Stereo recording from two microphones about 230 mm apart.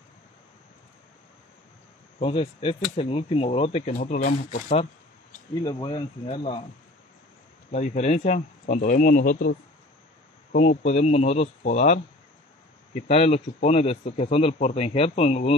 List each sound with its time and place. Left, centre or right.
2.1 s speech: left
5.5 s speech: centre
7.7 s speech: left
10.7 s speech: left
13.1 s speech: left